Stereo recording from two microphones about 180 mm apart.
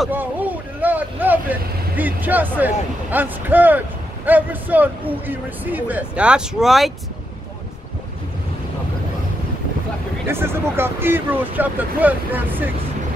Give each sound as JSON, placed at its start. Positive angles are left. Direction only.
{"t": 0.0, "sound": "speech", "side_deg": -10}
{"t": 10.2, "sound": "speech", "side_deg": -15}